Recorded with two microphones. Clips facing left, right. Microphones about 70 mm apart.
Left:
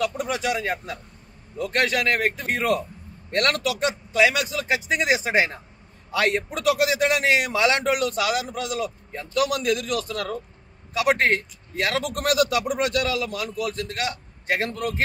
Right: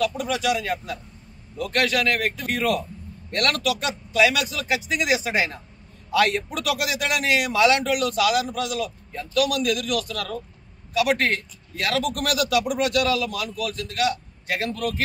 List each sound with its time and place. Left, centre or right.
0.2 s a man's voice: left